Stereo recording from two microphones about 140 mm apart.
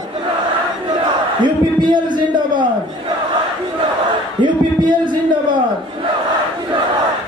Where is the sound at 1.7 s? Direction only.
35° right (ahead or behind).